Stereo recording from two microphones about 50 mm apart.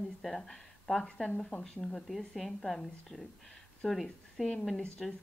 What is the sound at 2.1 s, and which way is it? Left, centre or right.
A woman's voice, centre.